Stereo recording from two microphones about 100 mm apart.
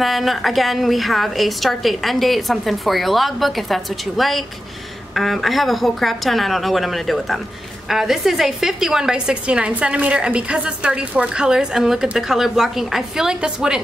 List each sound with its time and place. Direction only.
0.0 s a woman's voice: centre (ahead or behind)